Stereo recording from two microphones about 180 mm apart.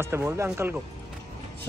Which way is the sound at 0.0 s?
15° right (ahead or behind).